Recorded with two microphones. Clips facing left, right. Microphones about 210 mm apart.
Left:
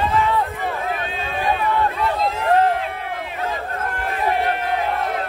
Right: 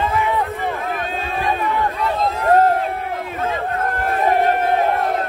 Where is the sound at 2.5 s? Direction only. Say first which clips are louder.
Right 3 dB; 45° right (ahead or behind).